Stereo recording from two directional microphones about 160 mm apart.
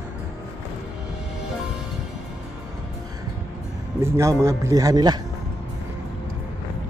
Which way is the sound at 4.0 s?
15° right (ahead or behind).